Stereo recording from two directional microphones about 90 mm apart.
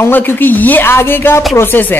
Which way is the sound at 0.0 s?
20° left (ahead or behind).